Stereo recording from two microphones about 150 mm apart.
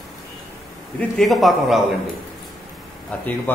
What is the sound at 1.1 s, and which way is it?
Speech, centre (ahead or behind).